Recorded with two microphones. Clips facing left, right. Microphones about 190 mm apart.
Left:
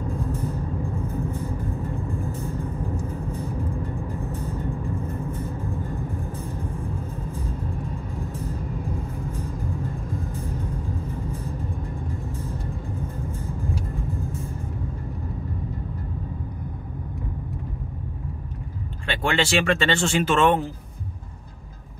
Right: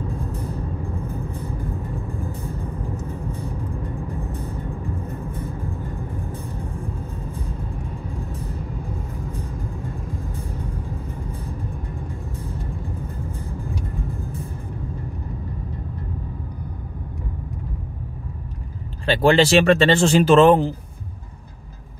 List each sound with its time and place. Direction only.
19.0 s speech: 35° right (ahead or behind)